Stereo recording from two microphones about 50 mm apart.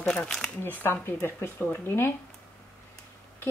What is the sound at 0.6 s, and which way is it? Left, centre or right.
Speech, left.